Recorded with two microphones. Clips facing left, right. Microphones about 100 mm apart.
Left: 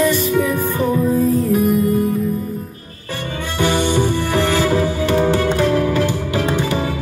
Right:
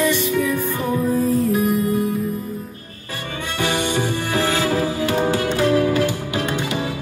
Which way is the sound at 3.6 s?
30° left (ahead or behind).